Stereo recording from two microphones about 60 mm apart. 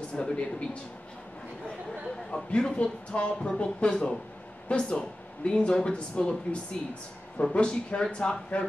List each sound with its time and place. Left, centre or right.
0.1 s speech: centre
2.3 s speech: centre